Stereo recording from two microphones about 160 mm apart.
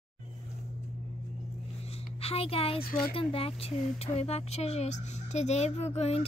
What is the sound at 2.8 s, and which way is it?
Speech, 70° left (ahead or behind).